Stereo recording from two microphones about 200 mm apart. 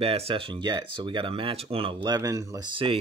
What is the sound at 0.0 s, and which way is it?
Speech, 30° right (ahead or behind).